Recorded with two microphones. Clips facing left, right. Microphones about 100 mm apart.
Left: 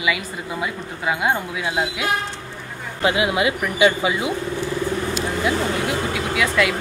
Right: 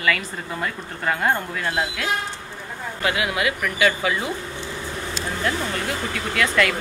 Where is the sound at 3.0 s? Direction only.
20° left (ahead or behind).